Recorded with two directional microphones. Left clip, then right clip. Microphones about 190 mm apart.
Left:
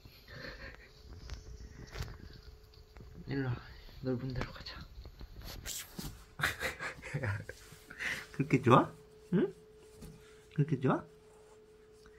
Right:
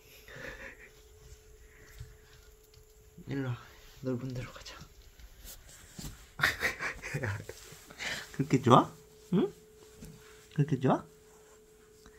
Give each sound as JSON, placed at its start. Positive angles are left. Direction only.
{"t": 0.3, "sound": "wheeze", "side_deg": -10}
{"t": 3.3, "sound": "speech", "side_deg": -10}
{"t": 6.3, "sound": "dog", "side_deg": -15}
{"t": 8.0, "sound": "a sound", "side_deg": -15}
{"t": 10.5, "sound": "speech", "side_deg": -25}